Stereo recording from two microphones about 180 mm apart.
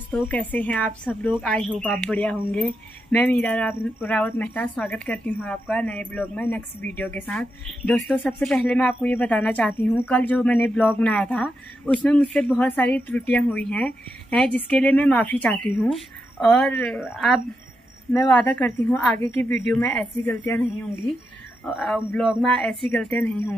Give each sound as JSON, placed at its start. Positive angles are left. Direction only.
{"t": 0.1, "sound": "speech", "side_deg": 10}
{"t": 21.6, "sound": "speech", "side_deg": 0}